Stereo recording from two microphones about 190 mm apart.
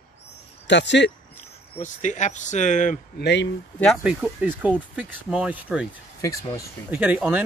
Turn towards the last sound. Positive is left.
turn(degrees=-5)  # may be behind; listen again after turning